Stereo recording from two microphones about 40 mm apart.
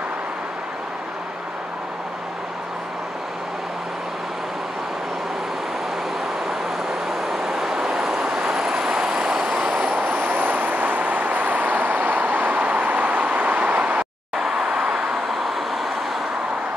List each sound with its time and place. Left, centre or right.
7.1 s vehicle: centre
9.5 s vehicle: right
9.8 s vehicle: right
14.3 s vehicle: centre